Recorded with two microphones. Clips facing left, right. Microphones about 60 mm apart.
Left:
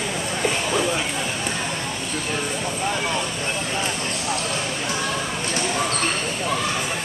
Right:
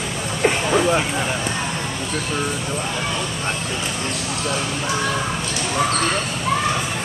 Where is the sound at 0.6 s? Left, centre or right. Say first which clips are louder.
Right 5 dB; right.